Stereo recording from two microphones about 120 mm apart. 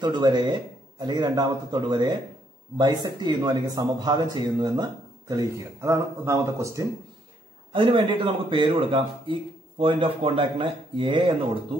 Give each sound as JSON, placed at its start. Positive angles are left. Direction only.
{"t": 0.0, "sound": "speech", "side_deg": -40}
{"t": 7.7, "sound": "a man's voice", "side_deg": -45}